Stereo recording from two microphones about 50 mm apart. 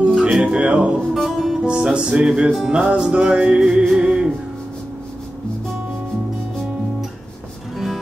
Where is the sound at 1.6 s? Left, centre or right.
Centre.